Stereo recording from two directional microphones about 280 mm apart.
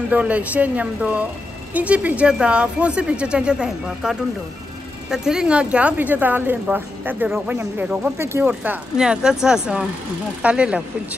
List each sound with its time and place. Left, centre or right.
0.1 s speech: centre